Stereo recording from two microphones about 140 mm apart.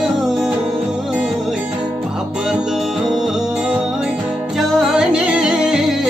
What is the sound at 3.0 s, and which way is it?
Music, 5° right (ahead or behind).